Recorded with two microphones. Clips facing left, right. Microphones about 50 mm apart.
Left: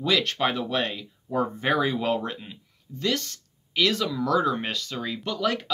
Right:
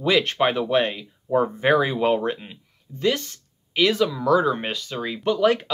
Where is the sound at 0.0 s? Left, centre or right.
Right.